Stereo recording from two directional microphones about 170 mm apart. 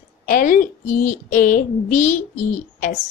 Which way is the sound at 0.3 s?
55° left (ahead or behind).